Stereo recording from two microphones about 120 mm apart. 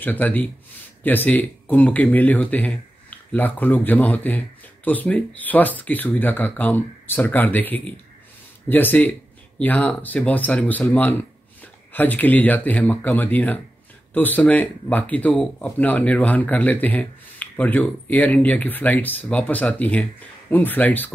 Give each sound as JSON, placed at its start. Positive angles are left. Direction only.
{"t": 0.0, "sound": "speech", "side_deg": 15}